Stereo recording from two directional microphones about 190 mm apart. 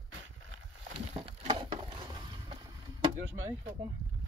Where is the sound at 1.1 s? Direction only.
35° right (ahead or behind).